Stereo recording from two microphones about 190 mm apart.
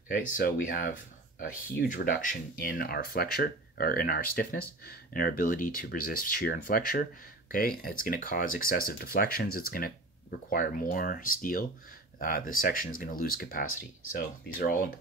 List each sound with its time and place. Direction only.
0.4 s speech: 45° left (ahead or behind)